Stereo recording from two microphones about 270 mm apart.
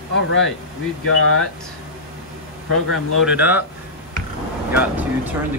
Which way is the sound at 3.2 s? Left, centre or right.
Centre.